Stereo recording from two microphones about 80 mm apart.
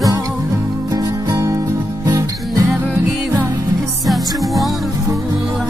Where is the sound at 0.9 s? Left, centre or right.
Right.